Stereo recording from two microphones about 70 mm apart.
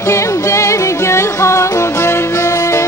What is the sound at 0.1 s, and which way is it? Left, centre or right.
Music, left.